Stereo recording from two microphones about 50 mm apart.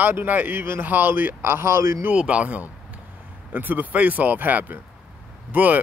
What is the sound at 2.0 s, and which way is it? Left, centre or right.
Speech, right.